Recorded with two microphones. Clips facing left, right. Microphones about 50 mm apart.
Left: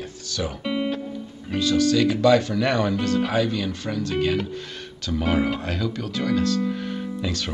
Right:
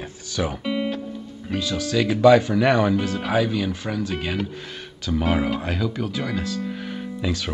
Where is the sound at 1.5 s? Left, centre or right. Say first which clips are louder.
Left 6 dB; centre.